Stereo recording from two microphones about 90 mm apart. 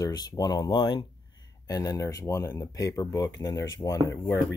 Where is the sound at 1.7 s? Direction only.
45° left (ahead or behind).